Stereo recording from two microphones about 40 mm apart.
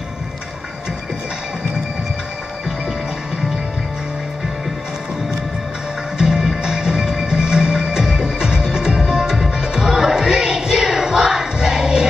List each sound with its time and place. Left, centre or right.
6.1 s music: centre